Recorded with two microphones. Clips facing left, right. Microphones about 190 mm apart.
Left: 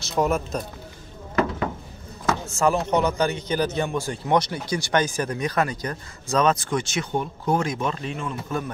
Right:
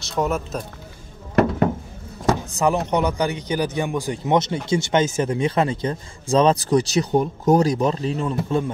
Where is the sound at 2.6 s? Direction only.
15° right (ahead or behind).